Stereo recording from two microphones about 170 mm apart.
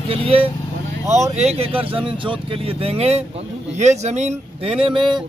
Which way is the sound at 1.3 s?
40° right (ahead or behind).